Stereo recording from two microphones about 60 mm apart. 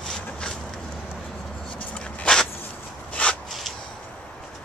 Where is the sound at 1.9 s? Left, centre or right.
Centre.